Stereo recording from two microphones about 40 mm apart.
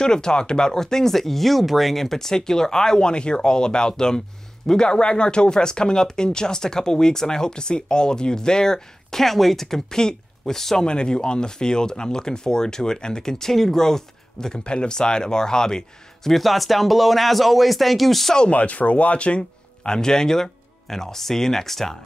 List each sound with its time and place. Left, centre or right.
0.0 s speech: centre
10.9 s speech: left
14.6 s speech: left
16.3 s speech: centre
18.5 s speech: left
20.0 s speech: centre